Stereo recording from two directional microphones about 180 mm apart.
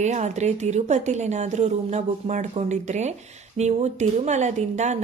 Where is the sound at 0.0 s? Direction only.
40° right (ahead or behind).